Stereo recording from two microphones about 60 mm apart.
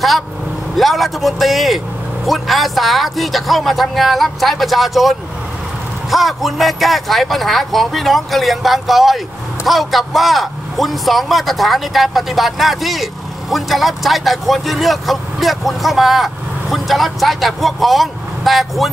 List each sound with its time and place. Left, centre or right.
0.7 s speech: centre